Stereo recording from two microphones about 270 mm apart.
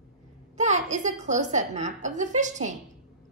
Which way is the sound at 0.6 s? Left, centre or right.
Right.